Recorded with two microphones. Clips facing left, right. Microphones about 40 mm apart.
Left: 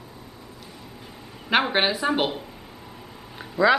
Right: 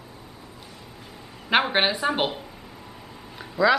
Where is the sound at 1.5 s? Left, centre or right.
Centre.